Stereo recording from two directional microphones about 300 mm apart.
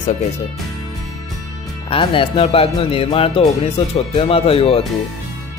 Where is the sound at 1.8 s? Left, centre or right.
Centre.